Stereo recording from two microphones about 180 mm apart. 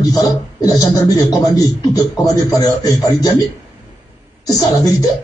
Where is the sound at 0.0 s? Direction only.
20° left (ahead or behind).